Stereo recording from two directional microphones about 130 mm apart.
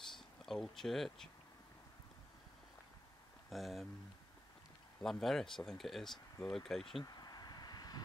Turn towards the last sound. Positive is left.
turn(degrees=30)  # may be behind; listen again after turning